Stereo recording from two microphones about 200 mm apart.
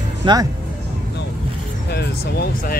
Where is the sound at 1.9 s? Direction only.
55° left (ahead or behind).